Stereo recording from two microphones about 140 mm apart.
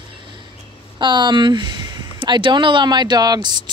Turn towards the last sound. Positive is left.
turn(degrees=-30)  # may be behind; listen again after turning